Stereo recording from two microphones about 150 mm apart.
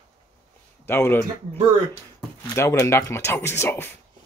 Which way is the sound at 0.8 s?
15° left (ahead or behind).